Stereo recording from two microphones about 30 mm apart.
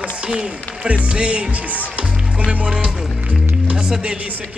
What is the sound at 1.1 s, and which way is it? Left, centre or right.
Speech, right.